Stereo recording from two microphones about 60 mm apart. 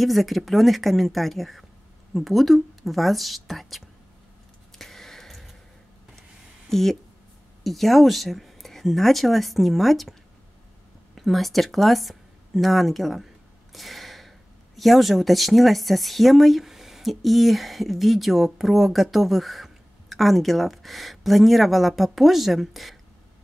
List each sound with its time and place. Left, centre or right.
0.0 s speech: centre
4.7 s a sound: centre
6.7 s speech: centre
11.1 s speech: centre